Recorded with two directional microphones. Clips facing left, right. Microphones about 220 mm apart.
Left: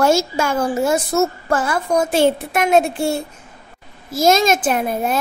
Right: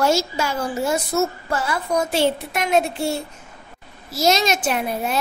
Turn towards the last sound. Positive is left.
turn(degrees=50)  # may be behind; listen again after turning